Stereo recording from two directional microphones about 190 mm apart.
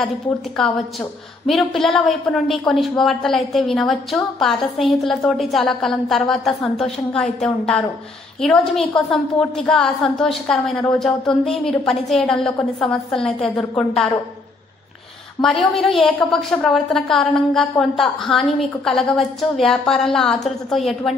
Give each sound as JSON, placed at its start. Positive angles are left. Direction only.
{"t": 1.5, "sound": "a woman's voice", "side_deg": 0}
{"t": 15.4, "sound": "a woman's voice", "side_deg": 0}